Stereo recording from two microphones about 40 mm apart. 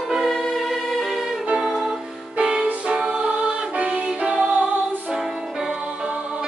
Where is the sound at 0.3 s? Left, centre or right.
Centre.